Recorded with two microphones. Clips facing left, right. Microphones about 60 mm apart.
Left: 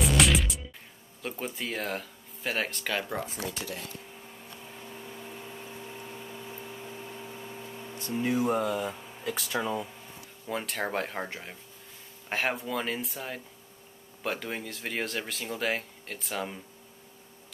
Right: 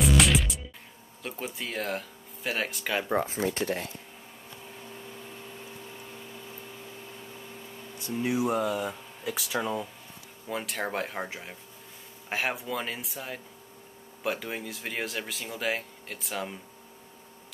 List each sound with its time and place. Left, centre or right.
0.0 s music: centre
1.2 s speech: centre
3.1 s speech: right
4.5 s microwave oven: centre
8.3 s speech: centre